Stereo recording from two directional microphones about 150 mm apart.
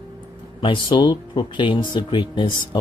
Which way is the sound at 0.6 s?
35° left (ahead or behind).